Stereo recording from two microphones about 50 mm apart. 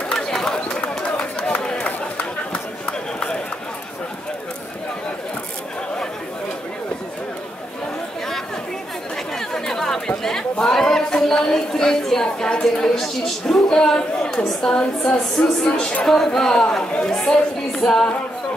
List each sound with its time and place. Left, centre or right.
0.1 s a sound: centre
0.7 s a sound: left
1.8 s run: left
2.5 s run: centre
9.5 s chatter: centre
10.5 s a woman's voice: centre